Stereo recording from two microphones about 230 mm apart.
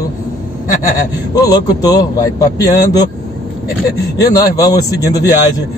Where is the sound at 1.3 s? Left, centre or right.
Centre.